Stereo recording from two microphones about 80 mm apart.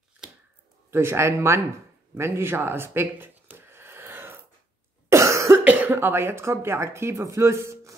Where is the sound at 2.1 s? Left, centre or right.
Right.